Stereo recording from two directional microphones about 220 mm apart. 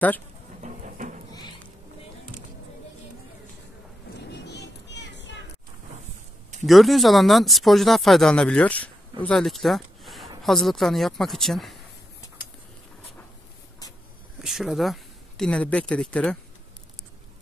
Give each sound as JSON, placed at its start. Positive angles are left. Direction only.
{"t": 0.6, "sound": "a sound", "side_deg": -35}
{"t": 4.5, "sound": "children playing", "side_deg": 50}
{"t": 6.6, "sound": "speech", "side_deg": 0}
{"t": 14.4, "sound": "speech", "side_deg": 0}